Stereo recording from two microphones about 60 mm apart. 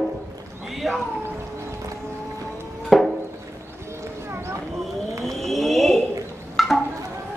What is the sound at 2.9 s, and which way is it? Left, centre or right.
Music, centre.